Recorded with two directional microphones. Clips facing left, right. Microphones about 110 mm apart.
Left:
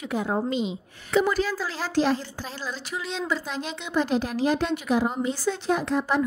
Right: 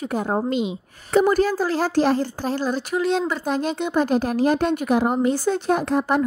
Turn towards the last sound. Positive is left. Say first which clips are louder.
# right 4 dB
turn(degrees=-50)  # may be behind; listen again after turning